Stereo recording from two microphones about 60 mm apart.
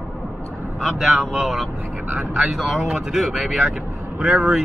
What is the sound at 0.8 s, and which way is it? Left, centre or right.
Speech, centre.